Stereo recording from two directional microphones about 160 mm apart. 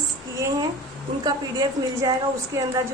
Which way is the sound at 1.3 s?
25° right (ahead or behind).